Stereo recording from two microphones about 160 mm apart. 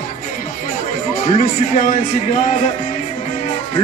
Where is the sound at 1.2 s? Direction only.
50° left (ahead or behind).